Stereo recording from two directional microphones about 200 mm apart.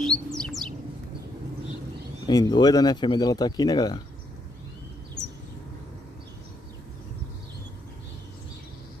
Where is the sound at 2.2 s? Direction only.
20° left (ahead or behind).